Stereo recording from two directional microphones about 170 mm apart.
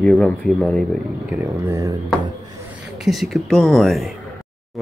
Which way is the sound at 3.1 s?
Centre (ahead or behind).